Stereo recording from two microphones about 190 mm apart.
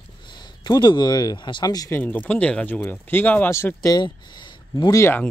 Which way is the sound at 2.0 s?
10° left (ahead or behind).